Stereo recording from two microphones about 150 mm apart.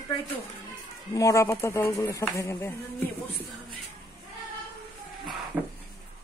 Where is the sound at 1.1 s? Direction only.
20° left (ahead or behind).